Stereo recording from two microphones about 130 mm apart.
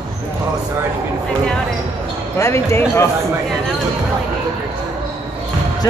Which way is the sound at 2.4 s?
20° left (ahead or behind).